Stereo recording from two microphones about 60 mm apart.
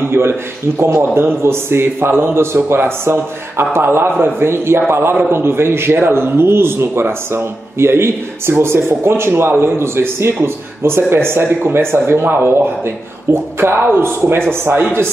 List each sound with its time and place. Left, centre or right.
0.1 s a man's voice: right